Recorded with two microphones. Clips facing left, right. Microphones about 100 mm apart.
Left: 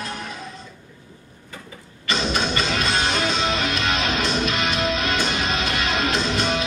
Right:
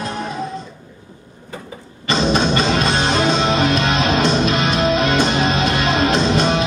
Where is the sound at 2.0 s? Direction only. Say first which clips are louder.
Right 7 dB; 30° right (ahead or behind).